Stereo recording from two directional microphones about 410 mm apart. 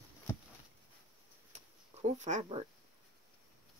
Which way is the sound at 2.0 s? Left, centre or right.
Centre.